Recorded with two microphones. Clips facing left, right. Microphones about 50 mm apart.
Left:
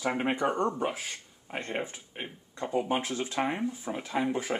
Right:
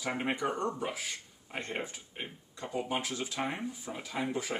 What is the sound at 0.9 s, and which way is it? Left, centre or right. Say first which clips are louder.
Speech: left 3 dB; left.